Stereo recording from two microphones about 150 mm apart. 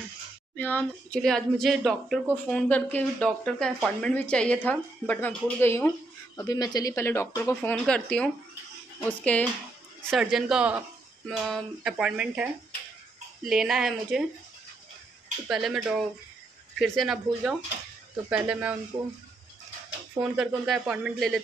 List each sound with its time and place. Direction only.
0.6 s a woman's voice: 10° left (ahead or behind)
2.3 s speech: 10° left (ahead or behind)
6.3 s speech: 25° left (ahead or behind); by 9.5 s 10° left (ahead or behind)
10.0 s a woman's voice: 5° right (ahead or behind)
15.4 s a woman's voice: 5° right (ahead or behind)
20.3 s a woman's voice: centre (ahead or behind)